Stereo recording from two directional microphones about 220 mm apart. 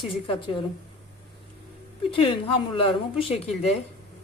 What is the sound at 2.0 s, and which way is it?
A woman's voice, 25° left (ahead or behind).